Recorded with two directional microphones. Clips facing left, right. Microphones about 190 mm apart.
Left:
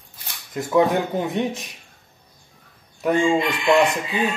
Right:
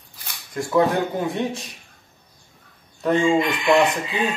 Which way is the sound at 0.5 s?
20° left (ahead or behind).